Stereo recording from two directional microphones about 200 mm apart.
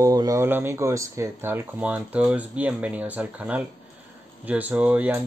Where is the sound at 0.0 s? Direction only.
15° right (ahead or behind).